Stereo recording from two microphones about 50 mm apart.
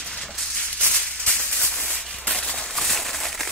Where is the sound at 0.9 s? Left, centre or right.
Centre.